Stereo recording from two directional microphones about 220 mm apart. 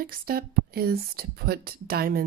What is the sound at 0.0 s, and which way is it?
A woman's voice, 40° right (ahead or behind).